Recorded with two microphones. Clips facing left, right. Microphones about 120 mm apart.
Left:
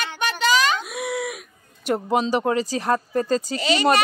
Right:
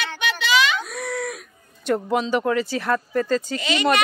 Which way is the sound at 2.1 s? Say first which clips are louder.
Left 2 dB; 35° left (ahead or behind).